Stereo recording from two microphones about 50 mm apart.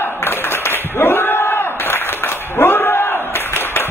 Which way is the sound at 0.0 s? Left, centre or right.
Left.